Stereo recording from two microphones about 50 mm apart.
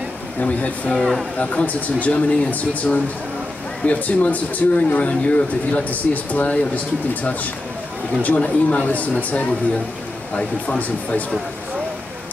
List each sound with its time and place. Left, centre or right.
0.4 s speech: left
0.8 s speech: centre
1.4 s speech: left
8.4 s speech: left
10.8 s speech: left